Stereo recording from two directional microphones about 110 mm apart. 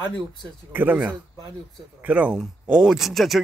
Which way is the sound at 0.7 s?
15° right (ahead or behind).